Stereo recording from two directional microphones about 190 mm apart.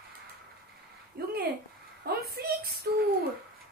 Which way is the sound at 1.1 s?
60° right (ahead or behind).